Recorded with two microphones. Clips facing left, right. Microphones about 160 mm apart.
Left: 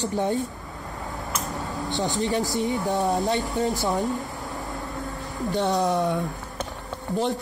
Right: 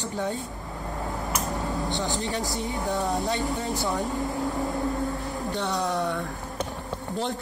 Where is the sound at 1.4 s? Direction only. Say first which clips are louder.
Right 2 dB; 20° right (ahead or behind).